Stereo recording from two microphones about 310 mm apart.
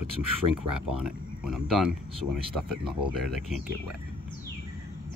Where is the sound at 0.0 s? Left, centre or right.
Right.